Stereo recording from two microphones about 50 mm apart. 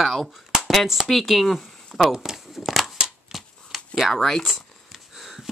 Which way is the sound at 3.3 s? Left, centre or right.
Centre.